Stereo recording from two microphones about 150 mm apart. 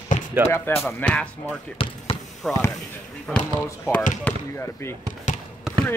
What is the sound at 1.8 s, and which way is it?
Basketball bounce, 40° left (ahead or behind).